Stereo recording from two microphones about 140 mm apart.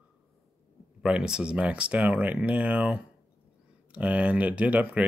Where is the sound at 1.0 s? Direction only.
5° right (ahead or behind).